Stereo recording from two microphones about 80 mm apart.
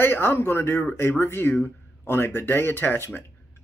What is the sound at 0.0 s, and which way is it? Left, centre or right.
Speech, left.